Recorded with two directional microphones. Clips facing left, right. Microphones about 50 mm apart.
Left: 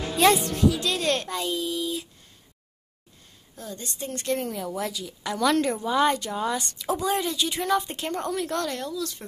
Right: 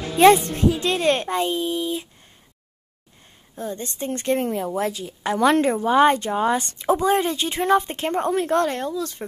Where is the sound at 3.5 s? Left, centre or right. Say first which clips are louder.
Right 7 dB; right.